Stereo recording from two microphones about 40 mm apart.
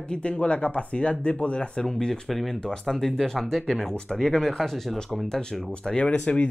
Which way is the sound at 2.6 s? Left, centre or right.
Centre.